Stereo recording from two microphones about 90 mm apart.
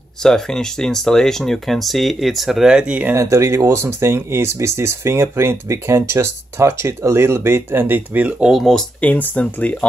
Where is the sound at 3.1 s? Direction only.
35° right (ahead or behind); by 8.5 s 15° right (ahead or behind).